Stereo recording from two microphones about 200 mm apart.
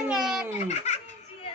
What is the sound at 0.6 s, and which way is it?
Speech, 35° left (ahead or behind).